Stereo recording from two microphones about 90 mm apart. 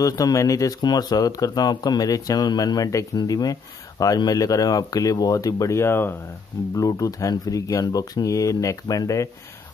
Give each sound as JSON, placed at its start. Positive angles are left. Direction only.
{"t": 0.0, "sound": "speech", "side_deg": 40}
{"t": 6.8, "sound": "speech", "side_deg": 40}